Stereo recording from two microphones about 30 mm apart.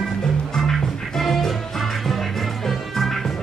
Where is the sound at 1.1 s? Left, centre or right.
Centre.